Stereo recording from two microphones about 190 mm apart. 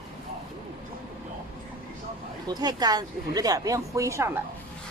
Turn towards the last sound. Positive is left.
turn(degrees=-15)  # may be behind; listen again after turning